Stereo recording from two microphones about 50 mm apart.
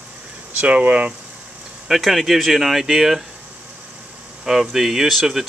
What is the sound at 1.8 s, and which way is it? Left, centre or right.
Speech, centre.